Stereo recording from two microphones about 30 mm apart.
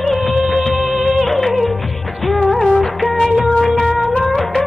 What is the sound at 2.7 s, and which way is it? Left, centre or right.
Music of bollywood, centre.